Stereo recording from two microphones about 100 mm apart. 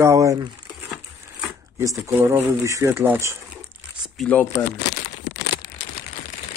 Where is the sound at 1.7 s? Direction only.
30° right (ahead or behind).